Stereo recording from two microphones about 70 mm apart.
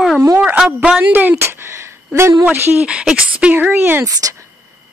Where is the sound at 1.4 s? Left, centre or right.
Right.